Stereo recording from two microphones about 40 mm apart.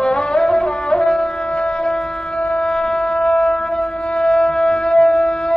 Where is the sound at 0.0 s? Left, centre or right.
Left.